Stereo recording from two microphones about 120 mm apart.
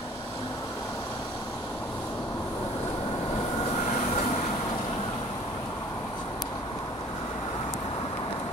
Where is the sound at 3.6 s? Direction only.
70° left (ahead or behind).